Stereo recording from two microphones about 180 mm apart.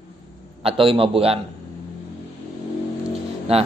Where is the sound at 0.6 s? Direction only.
30° right (ahead or behind).